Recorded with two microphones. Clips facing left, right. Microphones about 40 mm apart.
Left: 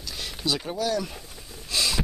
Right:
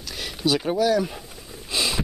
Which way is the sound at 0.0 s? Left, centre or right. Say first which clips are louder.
Right 5 dB; centre.